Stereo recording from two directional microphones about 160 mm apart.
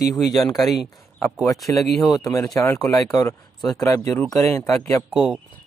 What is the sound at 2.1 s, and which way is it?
A man's voice, 20° left (ahead or behind).